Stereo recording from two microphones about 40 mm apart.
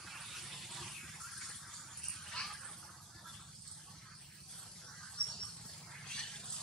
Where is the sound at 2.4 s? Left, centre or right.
Left.